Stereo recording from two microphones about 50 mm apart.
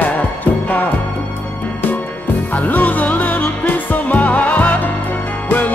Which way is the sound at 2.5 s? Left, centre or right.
Left.